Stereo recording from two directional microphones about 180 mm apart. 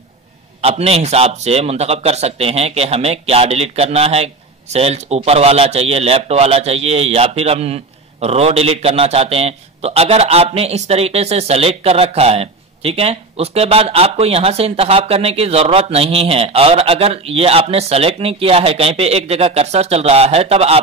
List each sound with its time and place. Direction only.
0.6 s a man's voice: 35° right (ahead or behind)